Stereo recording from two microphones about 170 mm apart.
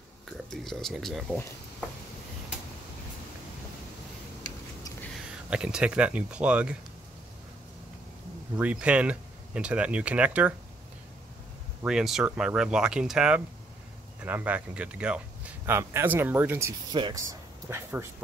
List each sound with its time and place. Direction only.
0.5 s speech: centre (ahead or behind)
5.5 s speech: 5° right (ahead or behind)
8.5 s speech: 5° right (ahead or behind)
11.8 s speech: centre (ahead or behind)
16.9 s speech: 25° right (ahead or behind)